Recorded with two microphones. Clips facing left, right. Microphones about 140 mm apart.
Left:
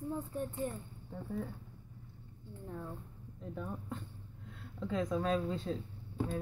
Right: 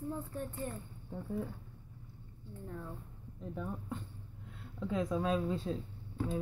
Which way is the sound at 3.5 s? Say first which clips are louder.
Right 1 dB; centre (ahead or behind).